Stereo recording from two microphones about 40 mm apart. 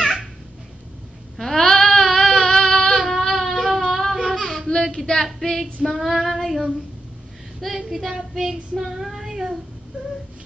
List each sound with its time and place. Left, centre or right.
0.0 s cat: centre
1.4 s sheep: centre
3.0 s baby cry: centre
4.3 s child singing: centre
4.9 s female singing: centre
5.2 s female singing: centre
6.1 s child singing: centre